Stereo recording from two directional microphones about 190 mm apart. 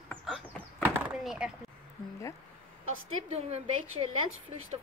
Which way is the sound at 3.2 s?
35° right (ahead or behind).